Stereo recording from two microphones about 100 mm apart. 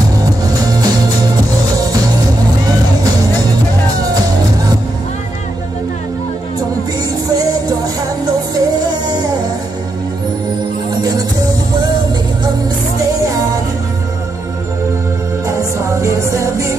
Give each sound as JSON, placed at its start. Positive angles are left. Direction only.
{"t": 0.2, "sound": "music", "side_deg": -40}
{"t": 7.2, "sound": "music", "side_deg": -40}
{"t": 10.9, "sound": "music", "side_deg": -45}
{"t": 15.4, "sound": "music", "side_deg": -30}